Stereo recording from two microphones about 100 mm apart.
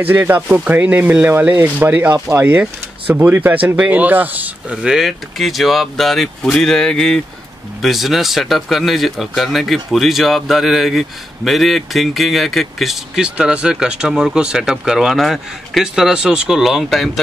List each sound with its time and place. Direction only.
0.0 s speech: 20° right (ahead or behind)
4.8 s speech: 5° right (ahead or behind)